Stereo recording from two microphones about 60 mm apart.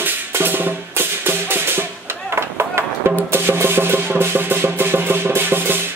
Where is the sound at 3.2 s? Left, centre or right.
Right.